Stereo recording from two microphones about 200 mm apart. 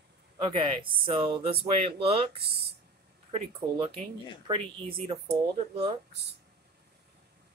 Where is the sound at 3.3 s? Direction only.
30° right (ahead or behind).